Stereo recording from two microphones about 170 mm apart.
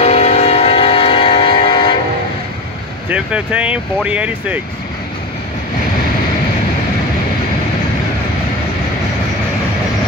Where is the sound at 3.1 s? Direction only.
10° right (ahead or behind).